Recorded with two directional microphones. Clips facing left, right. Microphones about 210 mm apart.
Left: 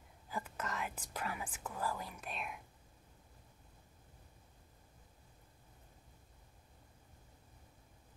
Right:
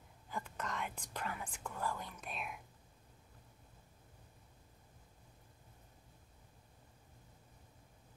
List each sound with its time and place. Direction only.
0.3 s speech: 5° left (ahead or behind)